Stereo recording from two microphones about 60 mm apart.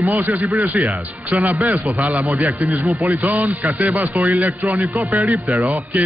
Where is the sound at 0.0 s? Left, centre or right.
Right.